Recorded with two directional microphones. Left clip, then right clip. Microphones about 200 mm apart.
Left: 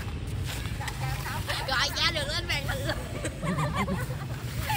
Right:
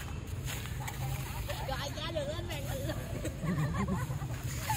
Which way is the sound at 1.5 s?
20° left (ahead or behind).